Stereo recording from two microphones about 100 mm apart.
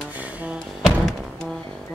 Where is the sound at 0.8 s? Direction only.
Centre (ahead or behind).